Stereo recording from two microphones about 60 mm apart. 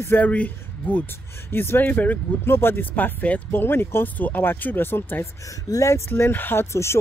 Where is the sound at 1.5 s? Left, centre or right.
Left.